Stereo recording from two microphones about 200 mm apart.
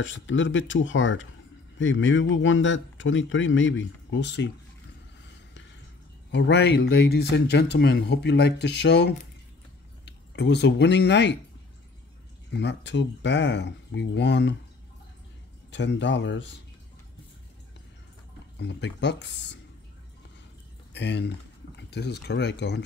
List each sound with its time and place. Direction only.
0.0 s speech: 70° left (ahead or behind)
6.3 s speech: 60° left (ahead or behind)
12.5 s speech: 60° left (ahead or behind)
15.7 s speech: 60° left (ahead or behind)
18.6 s speech: 60° left (ahead or behind)
20.9 s speech: 60° left (ahead or behind)